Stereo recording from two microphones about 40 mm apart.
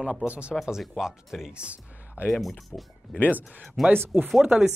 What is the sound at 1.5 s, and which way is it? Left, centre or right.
Speech, right.